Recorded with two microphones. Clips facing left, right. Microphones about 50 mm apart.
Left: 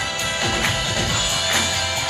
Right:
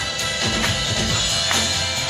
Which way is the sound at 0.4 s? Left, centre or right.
Left.